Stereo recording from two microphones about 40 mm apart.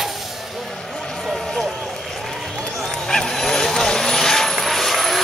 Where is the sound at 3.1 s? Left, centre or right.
Centre.